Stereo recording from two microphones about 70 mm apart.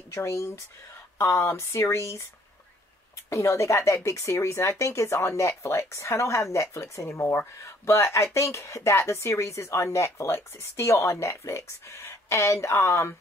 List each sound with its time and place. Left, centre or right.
0.1 s speech: left
3.3 s speech: left